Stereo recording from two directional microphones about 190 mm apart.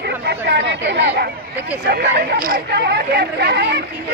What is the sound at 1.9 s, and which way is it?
Speech, 50° right (ahead or behind).